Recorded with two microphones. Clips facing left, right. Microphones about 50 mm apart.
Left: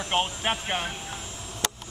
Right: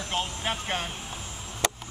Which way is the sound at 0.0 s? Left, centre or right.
Left.